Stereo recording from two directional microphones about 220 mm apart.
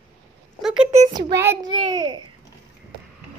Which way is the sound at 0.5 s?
Centre (ahead or behind).